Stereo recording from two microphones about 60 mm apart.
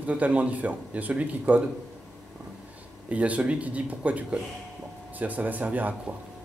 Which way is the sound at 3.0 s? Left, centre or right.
Right.